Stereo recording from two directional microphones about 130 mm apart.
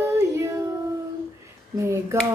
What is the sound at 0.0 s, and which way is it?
Child singing, 20° right (ahead or behind).